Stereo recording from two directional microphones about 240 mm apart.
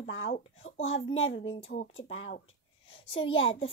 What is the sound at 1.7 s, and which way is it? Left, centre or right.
Speech, left.